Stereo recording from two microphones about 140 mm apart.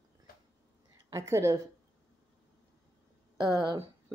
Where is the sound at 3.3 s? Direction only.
30° right (ahead or behind).